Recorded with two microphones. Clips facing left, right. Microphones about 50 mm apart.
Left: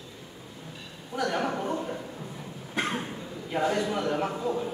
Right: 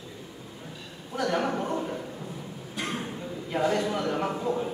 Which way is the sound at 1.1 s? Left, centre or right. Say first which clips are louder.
Right 1 dB; centre.